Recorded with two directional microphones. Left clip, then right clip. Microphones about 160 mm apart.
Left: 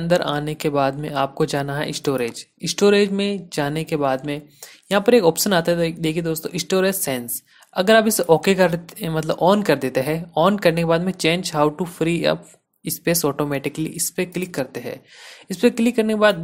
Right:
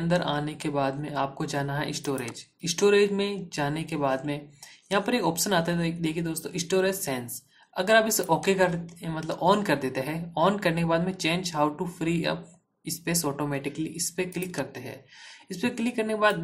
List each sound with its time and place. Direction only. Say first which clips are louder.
0.1 s speech: left 8 dB; 45° left (ahead or behind)